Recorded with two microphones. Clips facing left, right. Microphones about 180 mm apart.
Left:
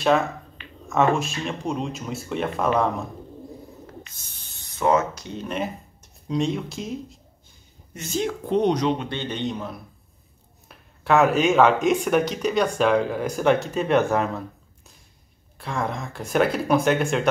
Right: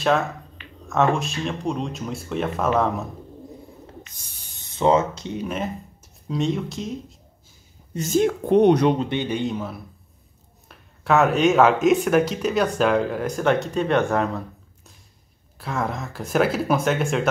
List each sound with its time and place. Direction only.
0.8 s speech: centre (ahead or behind)
4.6 s speech: 25° right (ahead or behind)
6.2 s speech: centre (ahead or behind)
7.9 s speech: 45° right (ahead or behind)
9.1 s a man's voice: 10° right (ahead or behind)
15.5 s speech: centre (ahead or behind)